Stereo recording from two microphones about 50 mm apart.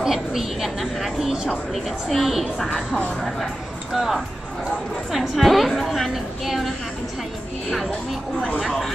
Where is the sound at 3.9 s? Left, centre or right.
Centre.